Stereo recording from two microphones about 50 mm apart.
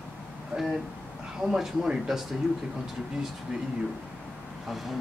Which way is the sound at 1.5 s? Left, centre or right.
Centre.